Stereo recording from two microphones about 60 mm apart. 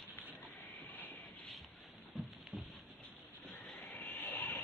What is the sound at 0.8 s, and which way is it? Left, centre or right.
Vehicle, left.